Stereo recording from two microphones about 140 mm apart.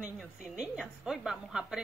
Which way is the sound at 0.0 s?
5° right (ahead or behind).